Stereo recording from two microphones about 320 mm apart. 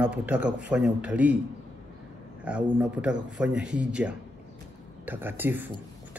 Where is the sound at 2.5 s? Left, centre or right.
Centre.